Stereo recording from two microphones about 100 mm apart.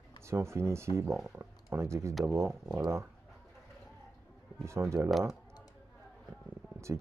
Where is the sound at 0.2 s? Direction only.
25° right (ahead or behind).